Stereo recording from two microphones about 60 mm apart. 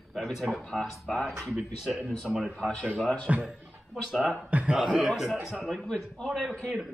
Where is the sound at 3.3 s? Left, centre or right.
Right.